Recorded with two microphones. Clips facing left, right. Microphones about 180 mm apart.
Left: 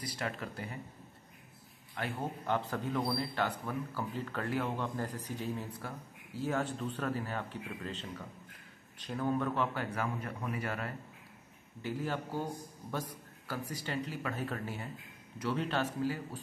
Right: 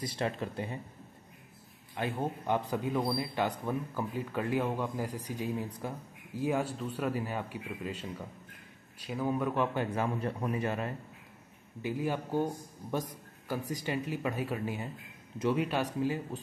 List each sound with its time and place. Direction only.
0.0 s a man's voice: 25° right (ahead or behind)
2.0 s a man's voice: 20° right (ahead or behind)